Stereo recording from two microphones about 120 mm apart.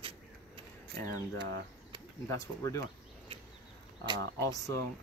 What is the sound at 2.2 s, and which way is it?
Speech, 25° left (ahead or behind).